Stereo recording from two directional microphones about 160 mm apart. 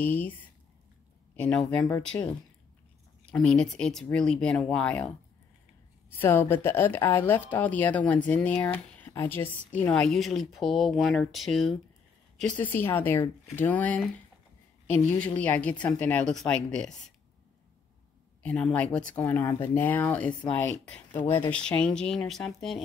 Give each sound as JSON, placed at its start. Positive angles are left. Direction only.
{"t": 0.0, "sound": "a woman's voice", "side_deg": 10}
{"t": 1.8, "sound": "speech", "side_deg": 20}
{"t": 3.3, "sound": "a woman's voice", "side_deg": 5}
{"t": 18.4, "sound": "a woman's voice", "side_deg": 5}